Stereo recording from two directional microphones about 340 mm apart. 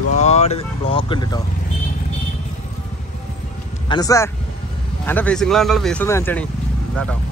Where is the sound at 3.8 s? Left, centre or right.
Centre.